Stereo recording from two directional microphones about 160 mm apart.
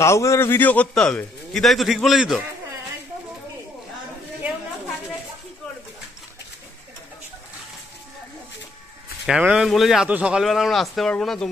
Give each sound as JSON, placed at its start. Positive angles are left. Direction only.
{"t": 0.0, "sound": "a man's voice", "side_deg": 20}
{"t": 9.2, "sound": "a man's voice", "side_deg": -5}